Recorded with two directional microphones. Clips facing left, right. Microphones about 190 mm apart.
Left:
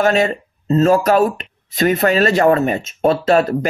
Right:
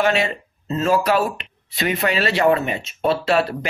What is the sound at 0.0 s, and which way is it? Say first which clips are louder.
Speech: left 4 dB; 40° left (ahead or behind).